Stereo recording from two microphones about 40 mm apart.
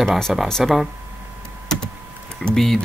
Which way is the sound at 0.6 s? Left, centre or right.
Centre.